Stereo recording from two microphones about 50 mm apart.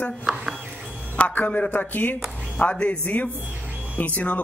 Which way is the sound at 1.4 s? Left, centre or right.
Left.